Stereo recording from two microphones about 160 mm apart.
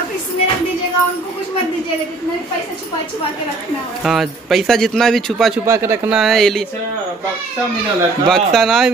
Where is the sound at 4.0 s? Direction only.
Centre (ahead or behind).